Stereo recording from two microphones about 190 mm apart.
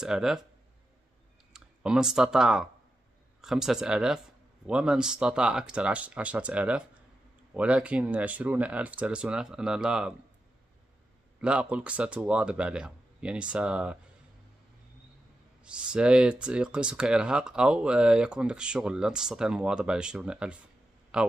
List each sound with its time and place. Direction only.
0.0 s speech: 5° right (ahead or behind)
1.5 s speech: 5° right (ahead or behind)
11.4 s speech: 5° right (ahead or behind)
15.6 s speech: 5° right (ahead or behind)